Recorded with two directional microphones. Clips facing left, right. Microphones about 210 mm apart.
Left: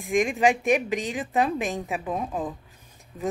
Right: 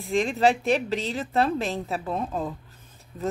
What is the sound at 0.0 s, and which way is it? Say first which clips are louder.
Speech: even; 15° left (ahead or behind).